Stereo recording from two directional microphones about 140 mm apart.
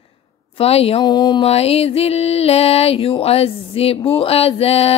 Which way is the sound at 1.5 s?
45° left (ahead or behind).